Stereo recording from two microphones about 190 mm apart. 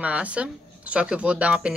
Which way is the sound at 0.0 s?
5° right (ahead or behind).